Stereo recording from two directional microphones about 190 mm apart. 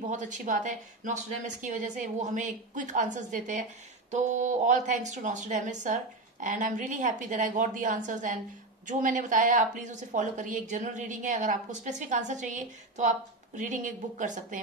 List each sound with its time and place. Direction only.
0.1 s a woman's voice: 40° right (ahead or behind)